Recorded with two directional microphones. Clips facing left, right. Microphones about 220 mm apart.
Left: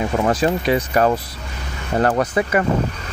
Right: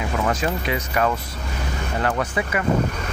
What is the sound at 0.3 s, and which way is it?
Speech, 35° left (ahead or behind).